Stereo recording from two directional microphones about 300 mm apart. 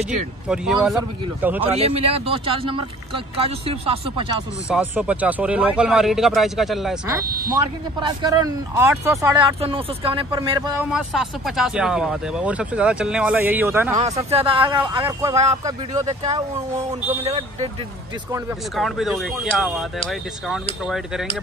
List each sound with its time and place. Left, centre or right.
0.5 s speech: centre
1.6 s speech: centre
4.6 s speech: centre
10.8 s speech: centre
13.9 s speech: right
15.3 s speech: right
18.8 s speech: centre